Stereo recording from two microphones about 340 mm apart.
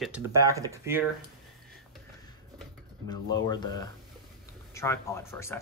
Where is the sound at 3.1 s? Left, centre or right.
Centre.